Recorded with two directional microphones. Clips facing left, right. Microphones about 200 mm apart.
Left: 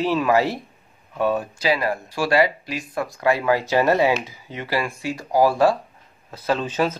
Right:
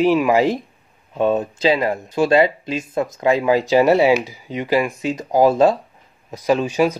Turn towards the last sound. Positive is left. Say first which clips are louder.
# right 5 dB
turn(degrees=-10)  # may be behind; listen again after turning